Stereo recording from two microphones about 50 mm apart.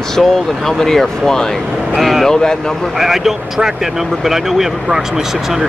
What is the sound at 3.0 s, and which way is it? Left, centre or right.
Speech, centre.